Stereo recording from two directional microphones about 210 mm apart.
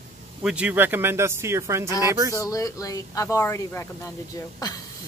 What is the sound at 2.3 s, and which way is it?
Speech, 15° left (ahead or behind).